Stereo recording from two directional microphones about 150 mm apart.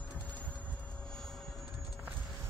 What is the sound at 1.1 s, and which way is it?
Vehicle, 5° left (ahead or behind).